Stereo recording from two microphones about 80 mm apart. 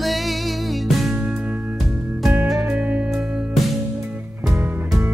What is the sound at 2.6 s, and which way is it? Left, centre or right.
Music, right.